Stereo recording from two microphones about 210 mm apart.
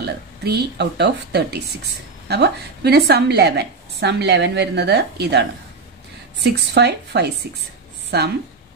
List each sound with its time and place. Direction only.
0.0 s a woman's voice: 50° right (ahead or behind)
6.4 s a woman's voice: 55° right (ahead or behind)